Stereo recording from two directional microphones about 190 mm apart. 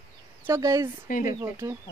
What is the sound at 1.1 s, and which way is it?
Speech, 45° left (ahead or behind).